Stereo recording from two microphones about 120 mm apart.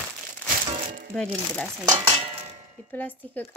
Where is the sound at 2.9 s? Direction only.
15° left (ahead or behind).